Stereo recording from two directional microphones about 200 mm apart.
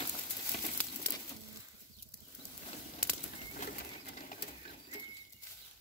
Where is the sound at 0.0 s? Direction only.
35° left (ahead or behind).